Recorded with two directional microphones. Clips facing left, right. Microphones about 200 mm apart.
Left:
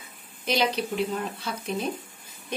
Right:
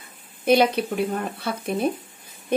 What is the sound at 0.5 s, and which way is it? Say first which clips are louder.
A woman's voice: right 7 dB; 55° right (ahead or behind).